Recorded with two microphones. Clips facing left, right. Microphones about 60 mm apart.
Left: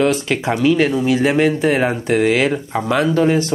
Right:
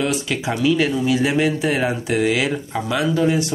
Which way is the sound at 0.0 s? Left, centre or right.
Left.